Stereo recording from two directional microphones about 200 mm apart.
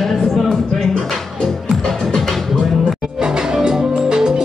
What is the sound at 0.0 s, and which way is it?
Music, centre (ahead or behind).